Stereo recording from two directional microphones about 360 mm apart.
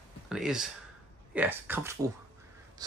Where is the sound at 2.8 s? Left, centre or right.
Centre.